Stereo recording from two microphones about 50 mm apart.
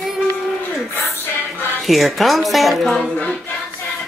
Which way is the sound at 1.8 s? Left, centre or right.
Centre.